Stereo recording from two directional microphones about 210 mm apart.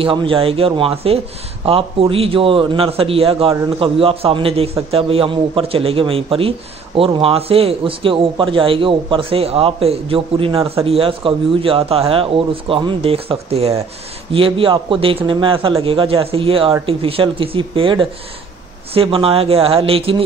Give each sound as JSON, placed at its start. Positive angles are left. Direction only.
{"t": 0.0, "sound": "a man's voice", "side_deg": -25}